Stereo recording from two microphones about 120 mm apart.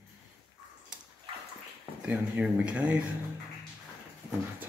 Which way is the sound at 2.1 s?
10° right (ahead or behind).